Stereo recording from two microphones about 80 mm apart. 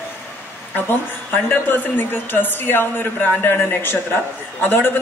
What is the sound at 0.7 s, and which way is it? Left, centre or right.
A woman's voice, left.